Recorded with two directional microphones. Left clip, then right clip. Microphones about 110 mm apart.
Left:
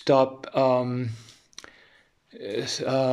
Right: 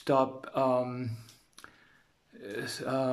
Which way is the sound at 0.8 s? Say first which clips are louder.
Left 5 dB; 5° right (ahead or behind).